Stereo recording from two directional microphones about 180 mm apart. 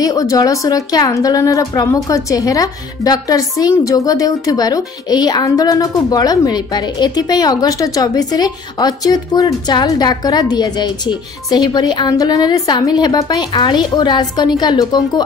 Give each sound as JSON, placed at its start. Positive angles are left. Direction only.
{"t": 0.0, "sound": "a woman's voice", "side_deg": 20}